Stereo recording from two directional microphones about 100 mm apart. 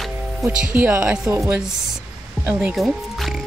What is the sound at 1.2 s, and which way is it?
Speech, 30° right (ahead or behind).